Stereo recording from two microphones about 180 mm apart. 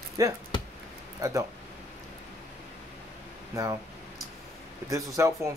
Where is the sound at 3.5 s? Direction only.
20° right (ahead or behind).